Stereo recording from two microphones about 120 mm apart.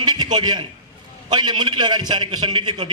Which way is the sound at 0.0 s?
35° right (ahead or behind).